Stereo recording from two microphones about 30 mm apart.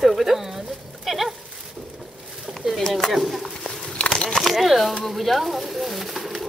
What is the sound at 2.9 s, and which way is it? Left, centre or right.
Speech, centre.